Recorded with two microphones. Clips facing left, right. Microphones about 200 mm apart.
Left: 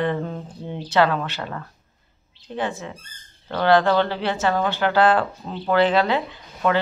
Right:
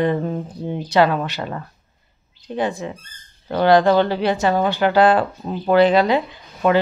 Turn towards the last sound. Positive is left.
turn(degrees=-15)  # may be behind; listen again after turning